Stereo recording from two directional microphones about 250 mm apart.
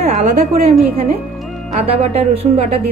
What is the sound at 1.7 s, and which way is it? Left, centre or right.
Speech, right.